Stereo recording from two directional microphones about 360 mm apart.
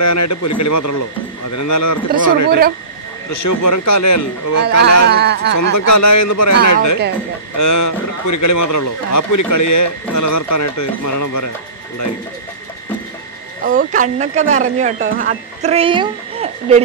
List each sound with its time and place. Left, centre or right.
0.0 s a man's voice: left
5.0 s speech: right
5.6 s a man's voice: left
13.7 s speech: right